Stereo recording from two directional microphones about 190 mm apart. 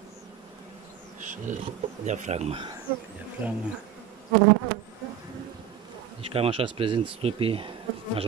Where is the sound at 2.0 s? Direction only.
40° right (ahead or behind).